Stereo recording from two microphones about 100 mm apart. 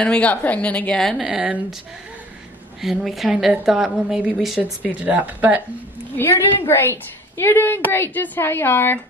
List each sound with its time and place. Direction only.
0.0 s a woman's voice: 10° left (ahead or behind)
1.2 s speech: 10° right (ahead or behind)
2.8 s a woman's voice: centre (ahead or behind)
5.0 s speech: 15° right (ahead or behind)
6.1 s a woman's voice: 20° left (ahead or behind)